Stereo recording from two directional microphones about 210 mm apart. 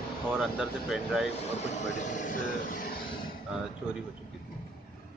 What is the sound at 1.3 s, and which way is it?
Speech, 30° left (ahead or behind).